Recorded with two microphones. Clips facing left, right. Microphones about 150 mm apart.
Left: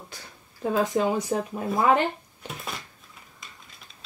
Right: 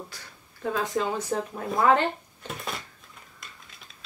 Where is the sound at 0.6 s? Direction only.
20° left (ahead or behind).